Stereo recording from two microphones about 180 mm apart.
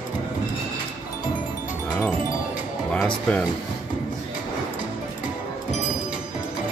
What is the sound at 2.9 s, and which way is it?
Speech, 5° left (ahead or behind).